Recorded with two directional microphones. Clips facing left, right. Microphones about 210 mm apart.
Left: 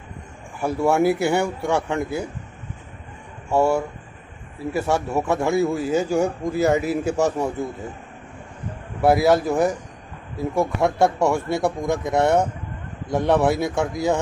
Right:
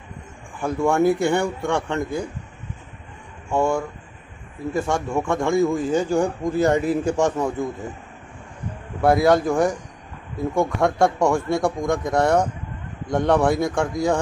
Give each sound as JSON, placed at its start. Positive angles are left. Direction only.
{"t": 0.6, "sound": "a man's voice", "side_deg": 10}
{"t": 3.4, "sound": "a man's voice", "side_deg": 5}
{"t": 9.0, "sound": "speech", "side_deg": 5}
{"t": 12.2, "sound": "speech", "side_deg": 25}
{"t": 13.1, "sound": "speech", "side_deg": 5}